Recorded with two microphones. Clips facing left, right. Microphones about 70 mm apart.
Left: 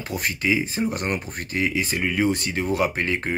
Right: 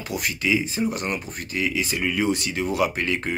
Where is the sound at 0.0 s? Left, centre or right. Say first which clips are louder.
Left 1 dB; left.